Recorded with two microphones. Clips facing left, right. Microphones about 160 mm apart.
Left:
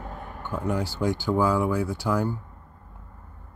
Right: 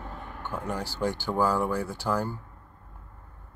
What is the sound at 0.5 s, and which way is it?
Speech, 15° left (ahead or behind).